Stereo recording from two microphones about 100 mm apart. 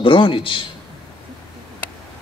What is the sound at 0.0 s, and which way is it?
Speech, 60° left (ahead or behind).